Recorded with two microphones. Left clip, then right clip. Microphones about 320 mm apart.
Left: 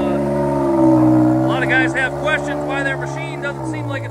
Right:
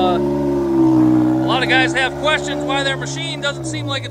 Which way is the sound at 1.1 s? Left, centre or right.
Centre.